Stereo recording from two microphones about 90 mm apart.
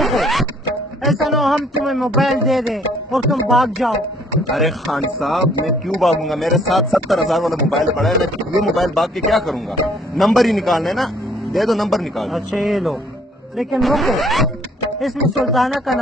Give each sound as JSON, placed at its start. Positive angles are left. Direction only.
{"t": 0.0, "sound": "zipper", "side_deg": 0}
{"t": 1.0, "sound": "a man's voice", "side_deg": 0}